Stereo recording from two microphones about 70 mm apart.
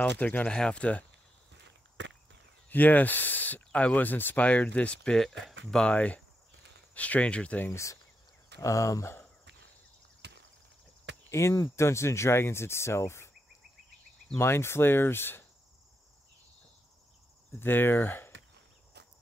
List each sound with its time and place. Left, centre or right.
0.0 s speech: left
0.5 s speech: centre
2.7 s speech: left
7.7 s speech: left
11.2 s speech: left
14.3 s speech: left
17.6 s speech: left